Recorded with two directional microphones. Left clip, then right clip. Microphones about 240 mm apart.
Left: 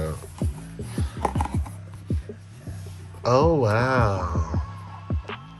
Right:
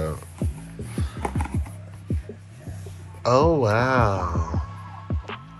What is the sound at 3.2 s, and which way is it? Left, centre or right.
Speech, centre.